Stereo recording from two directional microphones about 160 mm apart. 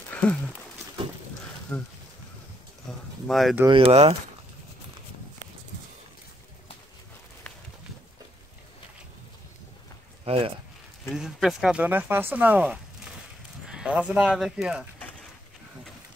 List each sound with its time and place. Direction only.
0.1 s a sound: 10° left (ahead or behind)
1.7 s speech: 15° left (ahead or behind)
3.3 s speech: centre (ahead or behind)
3.6 s speech: 35° right (ahead or behind)
10.2 s a sound: 40° right (ahead or behind)
11.1 s speech: centre (ahead or behind)